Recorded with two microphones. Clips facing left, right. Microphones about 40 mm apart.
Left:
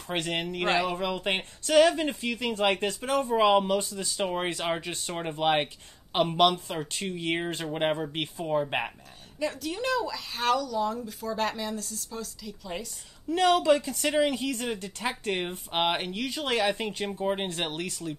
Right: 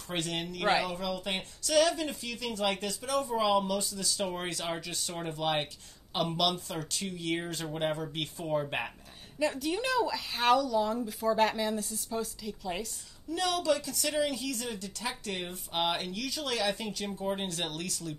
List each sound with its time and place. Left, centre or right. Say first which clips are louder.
0.1 s speech: left 4 dB; left
8.4 s speech: left 4 dB; centre
9.4 s speech: even; centre
13.3 s speech: left 7 dB; left